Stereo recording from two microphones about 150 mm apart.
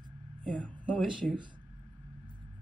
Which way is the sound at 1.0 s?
5° right (ahead or behind).